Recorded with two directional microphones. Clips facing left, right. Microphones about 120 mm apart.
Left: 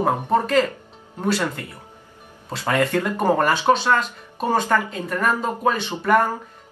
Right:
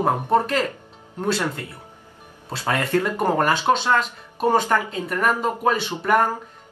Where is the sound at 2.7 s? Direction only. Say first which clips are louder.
Left 1 dB; centre (ahead or behind).